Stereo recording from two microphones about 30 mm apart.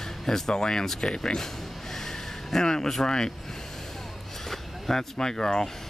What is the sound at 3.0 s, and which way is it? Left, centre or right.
Speech, centre.